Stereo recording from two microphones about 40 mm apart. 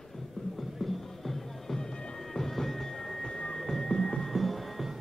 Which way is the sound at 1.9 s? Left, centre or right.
Centre.